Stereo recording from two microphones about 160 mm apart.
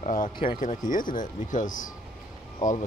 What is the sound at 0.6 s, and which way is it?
Speech, 55° left (ahead or behind).